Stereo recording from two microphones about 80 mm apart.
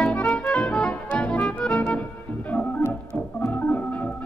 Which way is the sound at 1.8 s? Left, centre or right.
Centre.